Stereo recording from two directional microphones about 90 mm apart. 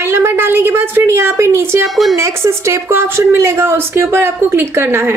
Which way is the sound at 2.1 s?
30° right (ahead or behind).